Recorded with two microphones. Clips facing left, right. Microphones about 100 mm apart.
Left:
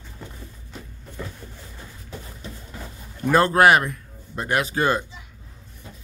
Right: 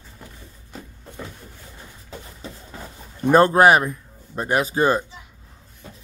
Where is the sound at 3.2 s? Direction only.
20° right (ahead or behind).